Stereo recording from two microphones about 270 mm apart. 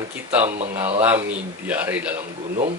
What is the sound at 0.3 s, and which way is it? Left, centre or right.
Speech, centre.